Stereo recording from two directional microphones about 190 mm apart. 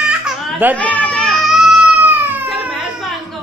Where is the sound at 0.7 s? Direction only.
5° left (ahead or behind).